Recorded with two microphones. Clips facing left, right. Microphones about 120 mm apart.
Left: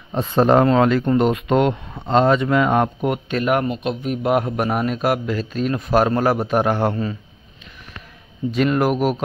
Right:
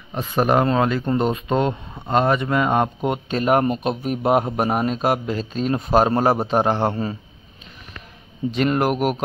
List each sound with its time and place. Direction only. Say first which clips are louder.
0.2 s speech: left 4 dB; 10° right (ahead or behind)
2.0 s speech: left 3 dB; 10° right (ahead or behind)
8.6 s speech: left 1 dB; 5° right (ahead or behind)